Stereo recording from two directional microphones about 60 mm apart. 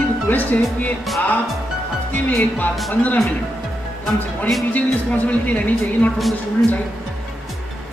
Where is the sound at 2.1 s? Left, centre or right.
Left.